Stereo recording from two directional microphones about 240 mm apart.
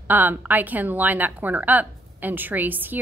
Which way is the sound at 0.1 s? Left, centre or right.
Centre.